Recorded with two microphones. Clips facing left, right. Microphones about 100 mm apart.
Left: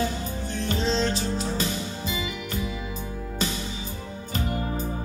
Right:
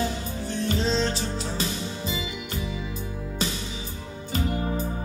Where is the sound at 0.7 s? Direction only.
40° left (ahead or behind).